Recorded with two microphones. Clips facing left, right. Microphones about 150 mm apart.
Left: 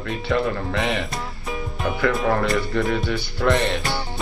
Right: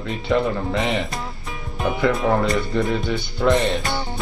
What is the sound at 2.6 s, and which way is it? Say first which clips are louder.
Speech: right 1 dB; 20° right (ahead or behind).